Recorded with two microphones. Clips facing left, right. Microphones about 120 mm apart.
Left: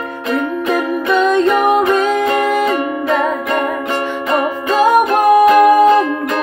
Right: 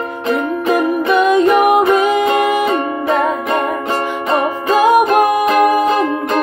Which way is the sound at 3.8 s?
25° right (ahead or behind).